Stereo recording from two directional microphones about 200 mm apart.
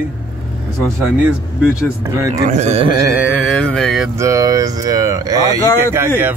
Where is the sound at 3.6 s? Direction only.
5° left (ahead or behind).